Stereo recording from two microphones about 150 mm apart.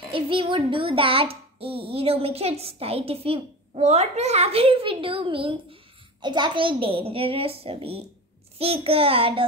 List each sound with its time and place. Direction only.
0.1 s child singing: 35° right (ahead or behind)